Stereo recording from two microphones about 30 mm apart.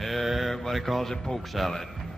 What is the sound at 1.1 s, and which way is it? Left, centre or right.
Speech, centre.